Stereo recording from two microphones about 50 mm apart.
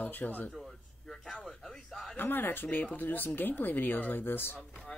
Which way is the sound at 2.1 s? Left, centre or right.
Left.